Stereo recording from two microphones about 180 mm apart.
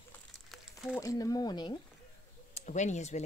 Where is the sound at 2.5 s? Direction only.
40° left (ahead or behind).